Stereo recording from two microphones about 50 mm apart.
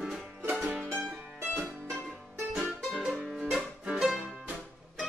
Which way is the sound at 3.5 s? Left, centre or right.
Centre.